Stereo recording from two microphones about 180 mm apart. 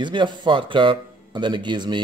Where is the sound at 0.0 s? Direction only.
25° right (ahead or behind).